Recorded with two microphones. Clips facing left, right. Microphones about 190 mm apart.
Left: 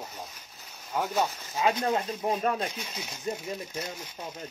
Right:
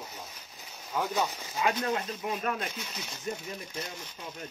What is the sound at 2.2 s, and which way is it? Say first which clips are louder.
Speech: left 5 dB; 35° left (ahead or behind).